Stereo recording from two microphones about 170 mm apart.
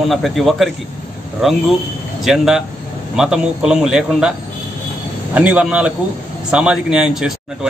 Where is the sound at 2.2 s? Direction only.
5° right (ahead or behind).